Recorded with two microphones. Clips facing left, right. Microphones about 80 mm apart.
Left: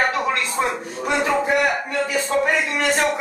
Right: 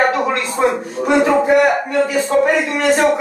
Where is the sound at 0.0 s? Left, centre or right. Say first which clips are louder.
Right 5 dB; centre.